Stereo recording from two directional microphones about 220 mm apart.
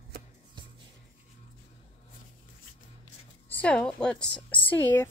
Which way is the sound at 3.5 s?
5° left (ahead or behind).